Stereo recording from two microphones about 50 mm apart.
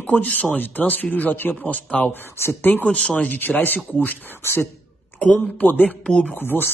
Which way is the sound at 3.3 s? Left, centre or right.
Left.